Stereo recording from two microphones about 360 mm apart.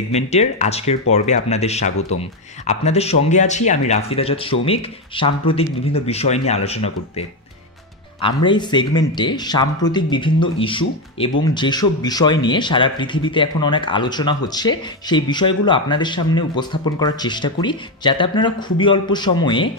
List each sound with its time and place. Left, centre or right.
0.1 s speech: centre
8.5 s speech: centre